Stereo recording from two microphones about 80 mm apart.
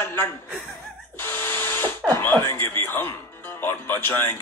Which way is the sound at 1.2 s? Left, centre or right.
Left.